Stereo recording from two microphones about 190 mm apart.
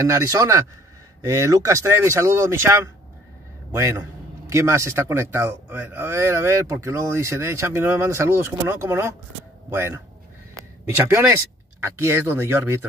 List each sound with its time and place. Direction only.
0.0 s speech: 15° right (ahead or behind)
10.5 s a sound: 15° right (ahead or behind)
11.8 s speech: 15° right (ahead or behind)